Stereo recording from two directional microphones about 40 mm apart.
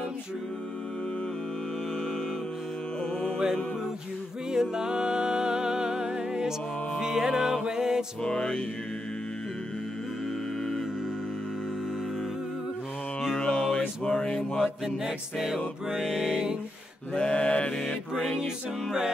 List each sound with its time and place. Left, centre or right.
4.5 s music: centre
8.2 s mantra: centre
13.3 s music: left
15.3 s music: centre
15.9 s music: centre
16.2 s music: centre
17.1 s mantra: left
18.1 s music: centre
18.4 s music: centre